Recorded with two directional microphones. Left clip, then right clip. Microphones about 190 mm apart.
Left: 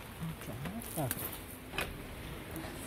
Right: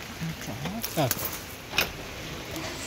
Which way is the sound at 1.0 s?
15° right (ahead or behind).